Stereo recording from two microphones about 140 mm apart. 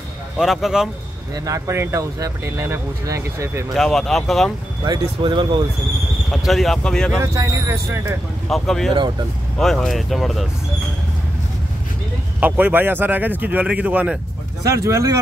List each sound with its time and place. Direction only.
0.4 s speech: centre (ahead or behind)
1.3 s speech: 25° right (ahead or behind)
3.7 s speech: centre (ahead or behind)
4.8 s speech: 35° right (ahead or behind)
6.3 s speech: centre (ahead or behind)
7.2 s speech: 20° right (ahead or behind)
8.5 s speech: centre (ahead or behind)
12.4 s speech: 10° right (ahead or behind)
14.9 s speech: 20° right (ahead or behind)